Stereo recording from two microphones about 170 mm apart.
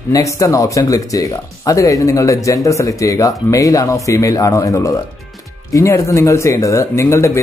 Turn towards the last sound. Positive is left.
turn(degrees=15)  # may be behind; listen again after turning